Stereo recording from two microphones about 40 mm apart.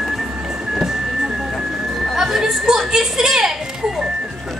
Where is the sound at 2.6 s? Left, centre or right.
Centre.